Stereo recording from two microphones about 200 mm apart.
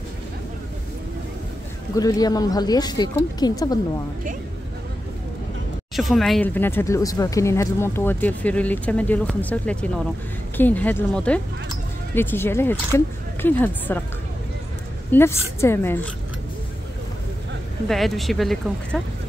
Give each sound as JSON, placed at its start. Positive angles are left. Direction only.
{"t": 2.0, "sound": "speech", "side_deg": 20}
{"t": 5.9, "sound": "speech", "side_deg": 0}
{"t": 15.1, "sound": "speech", "side_deg": 10}
{"t": 17.8, "sound": "speech", "side_deg": 0}